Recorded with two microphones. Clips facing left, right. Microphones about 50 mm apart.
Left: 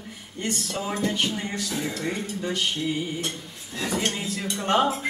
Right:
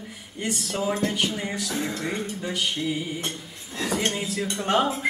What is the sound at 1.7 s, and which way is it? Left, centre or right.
Music, right.